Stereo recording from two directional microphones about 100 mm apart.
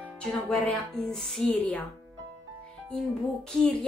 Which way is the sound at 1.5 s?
15° left (ahead or behind).